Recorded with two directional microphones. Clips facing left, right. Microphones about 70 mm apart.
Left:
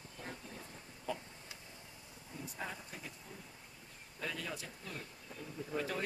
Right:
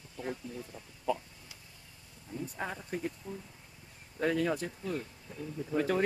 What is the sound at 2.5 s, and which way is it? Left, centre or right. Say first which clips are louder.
Speech: right 7 dB; right.